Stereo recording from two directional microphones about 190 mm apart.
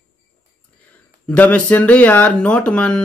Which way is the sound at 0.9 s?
10° left (ahead or behind).